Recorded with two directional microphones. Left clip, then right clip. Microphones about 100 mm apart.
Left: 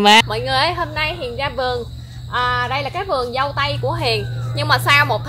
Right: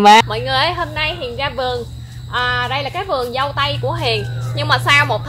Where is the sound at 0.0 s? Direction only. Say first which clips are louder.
Right 3 dB; 10° right (ahead or behind).